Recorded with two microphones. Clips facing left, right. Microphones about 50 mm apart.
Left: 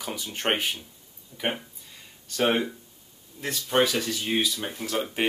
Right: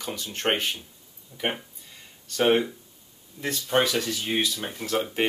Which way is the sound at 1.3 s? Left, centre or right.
Centre.